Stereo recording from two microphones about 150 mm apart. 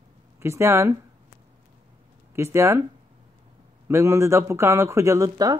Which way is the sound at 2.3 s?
20° right (ahead or behind).